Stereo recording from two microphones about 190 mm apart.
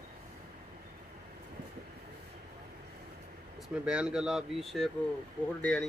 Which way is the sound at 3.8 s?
5° right (ahead or behind).